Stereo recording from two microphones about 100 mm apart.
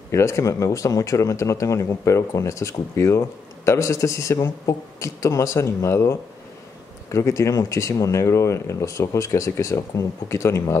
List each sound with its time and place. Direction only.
0.1 s speech: 30° left (ahead or behind)